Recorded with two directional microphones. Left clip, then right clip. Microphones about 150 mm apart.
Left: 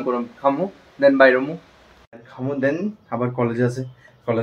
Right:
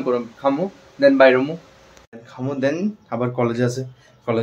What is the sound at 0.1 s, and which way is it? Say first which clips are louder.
Speech: even; 10° right (ahead or behind).